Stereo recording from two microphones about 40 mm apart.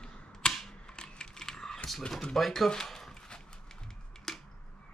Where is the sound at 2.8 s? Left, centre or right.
Centre.